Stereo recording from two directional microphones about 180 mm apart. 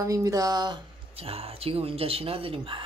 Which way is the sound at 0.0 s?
20° right (ahead or behind).